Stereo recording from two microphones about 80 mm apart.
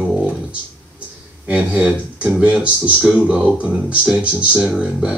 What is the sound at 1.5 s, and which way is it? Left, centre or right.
Speech, centre.